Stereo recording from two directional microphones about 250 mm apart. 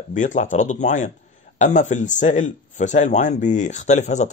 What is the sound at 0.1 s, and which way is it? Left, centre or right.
Speech, left.